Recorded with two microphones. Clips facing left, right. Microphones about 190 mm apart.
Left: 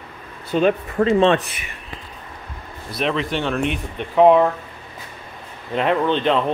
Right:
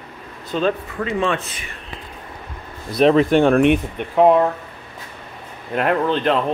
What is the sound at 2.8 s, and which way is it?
Speech, 40° right (ahead or behind).